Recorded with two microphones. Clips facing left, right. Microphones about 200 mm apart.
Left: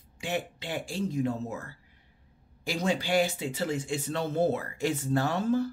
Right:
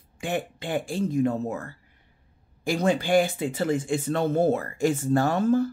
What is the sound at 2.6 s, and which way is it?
Speech, 55° right (ahead or behind).